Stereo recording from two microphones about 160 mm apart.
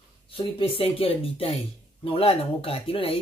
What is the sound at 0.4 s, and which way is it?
Speech, 35° left (ahead or behind).